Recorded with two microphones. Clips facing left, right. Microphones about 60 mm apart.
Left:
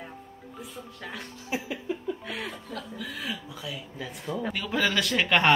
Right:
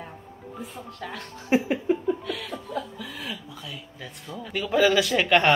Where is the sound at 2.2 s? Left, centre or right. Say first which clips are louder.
Right 2 dB; left.